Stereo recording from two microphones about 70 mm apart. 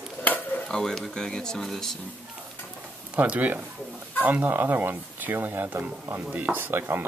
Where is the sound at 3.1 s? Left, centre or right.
Centre.